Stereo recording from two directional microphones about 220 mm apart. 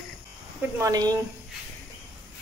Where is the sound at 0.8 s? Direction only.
15° right (ahead or behind).